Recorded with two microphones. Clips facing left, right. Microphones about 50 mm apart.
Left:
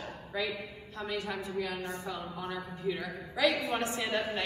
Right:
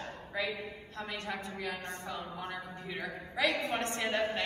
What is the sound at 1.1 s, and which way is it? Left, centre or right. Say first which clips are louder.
A woman's voice: left 5 dB; right.